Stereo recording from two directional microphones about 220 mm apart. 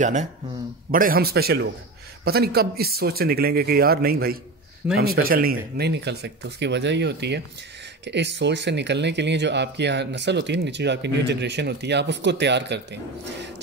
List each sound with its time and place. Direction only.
0.0 s speech: 35° right (ahead or behind); by 13.5 s 50° right (ahead or behind)